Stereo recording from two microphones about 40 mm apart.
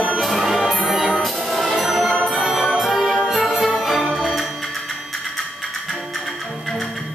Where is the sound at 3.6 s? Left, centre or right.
Centre.